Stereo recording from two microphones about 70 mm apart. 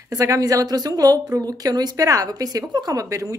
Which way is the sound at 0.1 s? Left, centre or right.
Right.